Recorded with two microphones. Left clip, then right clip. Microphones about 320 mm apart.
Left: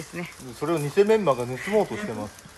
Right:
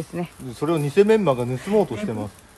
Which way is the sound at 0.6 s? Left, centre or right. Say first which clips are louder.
Right 3 dB; right.